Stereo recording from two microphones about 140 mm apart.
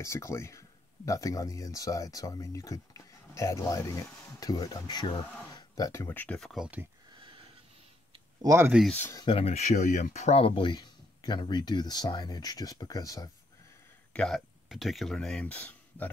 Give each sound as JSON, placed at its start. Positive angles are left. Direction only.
{"t": 0.0, "sound": "speech", "side_deg": 20}
{"t": 7.2, "sound": "wheeze", "side_deg": -40}
{"t": 8.1, "sound": "a sound", "side_deg": -25}
{"t": 8.9, "sound": "speech", "side_deg": 15}
{"t": 9.2, "sound": "speech", "side_deg": 40}
{"t": 14.1, "sound": "speech", "side_deg": 0}